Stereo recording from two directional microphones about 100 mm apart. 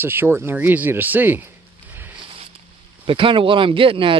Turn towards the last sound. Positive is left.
turn(degrees=-60)  # may be behind; listen again after turning